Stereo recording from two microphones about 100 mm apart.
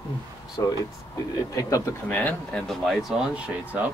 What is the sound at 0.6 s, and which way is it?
Speech, 35° left (ahead or behind).